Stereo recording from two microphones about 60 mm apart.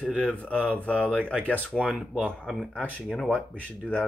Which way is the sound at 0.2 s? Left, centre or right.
Centre.